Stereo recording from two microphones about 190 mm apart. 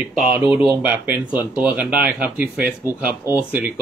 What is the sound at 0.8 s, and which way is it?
A man's voice, 10° right (ahead or behind).